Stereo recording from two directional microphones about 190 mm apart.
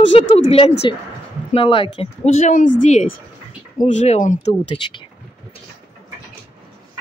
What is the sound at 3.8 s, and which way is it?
Speech, 35° left (ahead or behind).